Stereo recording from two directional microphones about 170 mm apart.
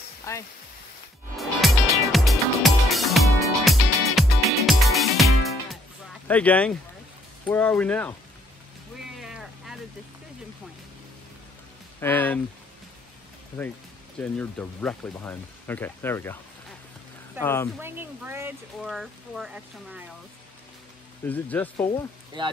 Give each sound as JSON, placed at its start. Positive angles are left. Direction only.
{"t": 0.3, "sound": "speech", "side_deg": 20}
{"t": 1.3, "sound": "music", "side_deg": 0}
{"t": 6.2, "sound": "speech", "side_deg": 10}
{"t": 9.0, "sound": "vehicle", "side_deg": 0}
{"t": 12.0, "sound": "speech", "side_deg": 10}
{"t": 13.6, "sound": "speech", "side_deg": 10}
{"t": 17.4, "sound": "speech", "side_deg": 15}
{"t": 17.7, "sound": "speech", "side_deg": -10}
{"t": 18.8, "sound": "speech", "side_deg": 0}
{"t": 21.3, "sound": "speech", "side_deg": 10}
{"t": 22.4, "sound": "speech", "side_deg": -25}